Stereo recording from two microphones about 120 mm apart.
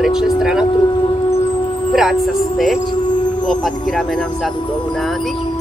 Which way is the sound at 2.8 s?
40° left (ahead or behind).